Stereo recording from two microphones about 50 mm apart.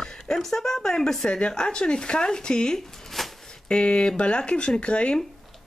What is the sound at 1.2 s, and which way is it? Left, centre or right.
Speech, centre.